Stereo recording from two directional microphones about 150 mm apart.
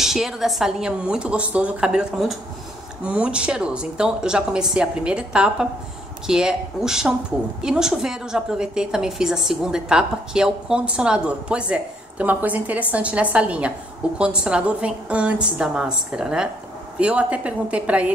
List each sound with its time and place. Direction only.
0.0 s a woman's voice: 5° right (ahead or behind)